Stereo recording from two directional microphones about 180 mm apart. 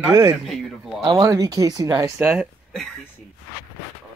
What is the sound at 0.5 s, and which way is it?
Speech, centre (ahead or behind).